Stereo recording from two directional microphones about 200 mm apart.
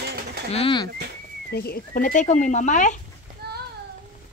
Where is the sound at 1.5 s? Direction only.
50° left (ahead or behind).